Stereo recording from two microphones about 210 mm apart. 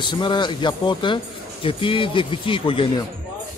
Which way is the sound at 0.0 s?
20° left (ahead or behind).